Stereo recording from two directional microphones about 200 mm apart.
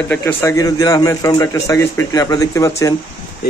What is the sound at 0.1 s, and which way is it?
A man's voice, 10° left (ahead or behind).